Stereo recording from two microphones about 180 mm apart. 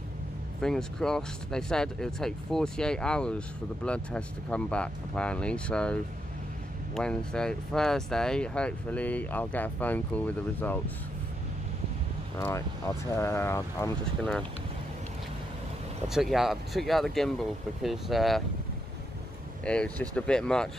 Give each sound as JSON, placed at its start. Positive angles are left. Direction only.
{"t": 0.6, "sound": "speech", "side_deg": 5}
{"t": 7.0, "sound": "speech", "side_deg": 5}
{"t": 12.4, "sound": "speech", "side_deg": 15}
{"t": 16.1, "sound": "speech", "side_deg": 0}
{"t": 19.6, "sound": "speech", "side_deg": 5}